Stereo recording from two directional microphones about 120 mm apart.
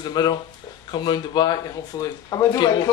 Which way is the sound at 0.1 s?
35° left (ahead or behind).